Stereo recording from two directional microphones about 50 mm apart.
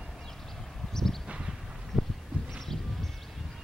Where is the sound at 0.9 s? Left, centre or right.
Centre.